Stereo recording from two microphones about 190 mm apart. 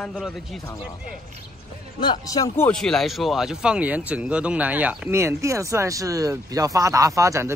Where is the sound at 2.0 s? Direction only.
20° left (ahead or behind).